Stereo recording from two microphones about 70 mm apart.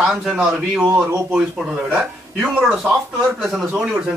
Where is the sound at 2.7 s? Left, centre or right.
Centre.